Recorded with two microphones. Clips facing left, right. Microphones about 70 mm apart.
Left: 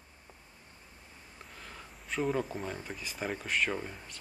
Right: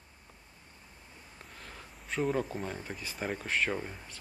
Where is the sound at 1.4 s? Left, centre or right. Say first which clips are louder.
Left 1 dB; centre.